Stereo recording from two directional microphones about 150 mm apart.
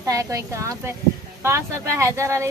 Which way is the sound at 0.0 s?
20° right (ahead or behind).